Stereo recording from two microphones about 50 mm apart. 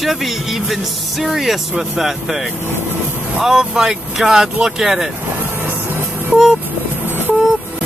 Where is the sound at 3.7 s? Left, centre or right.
Centre.